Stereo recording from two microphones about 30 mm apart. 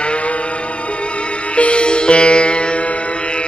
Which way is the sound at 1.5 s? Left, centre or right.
Left.